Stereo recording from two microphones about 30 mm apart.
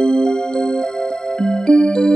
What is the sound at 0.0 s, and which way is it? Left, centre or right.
Music, left.